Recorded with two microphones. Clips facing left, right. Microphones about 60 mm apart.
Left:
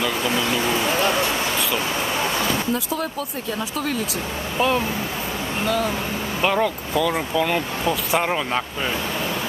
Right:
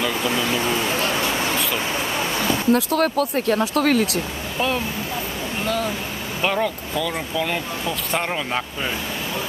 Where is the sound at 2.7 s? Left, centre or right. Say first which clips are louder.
Right 6 dB; right.